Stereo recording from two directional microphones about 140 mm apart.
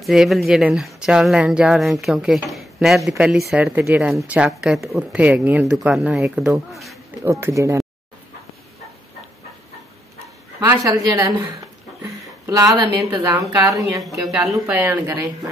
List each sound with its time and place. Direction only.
0.0 s speech: centre (ahead or behind)
7.2 s a woman's voice: 20° right (ahead or behind)
10.6 s a woman's voice: 20° right (ahead or behind)
13.8 s speech: centre (ahead or behind)
14.3 s speech: 15° right (ahead or behind)